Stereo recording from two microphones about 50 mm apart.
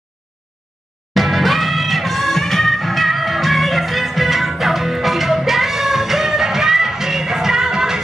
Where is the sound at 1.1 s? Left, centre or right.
Centre.